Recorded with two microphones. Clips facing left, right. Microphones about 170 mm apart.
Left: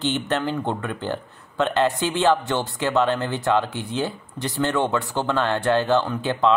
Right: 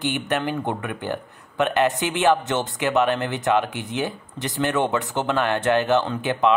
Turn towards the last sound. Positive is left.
turn(degrees=-15)  # may be behind; listen again after turning